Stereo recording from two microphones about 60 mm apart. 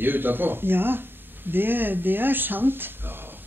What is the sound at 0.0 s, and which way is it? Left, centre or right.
Speech, right.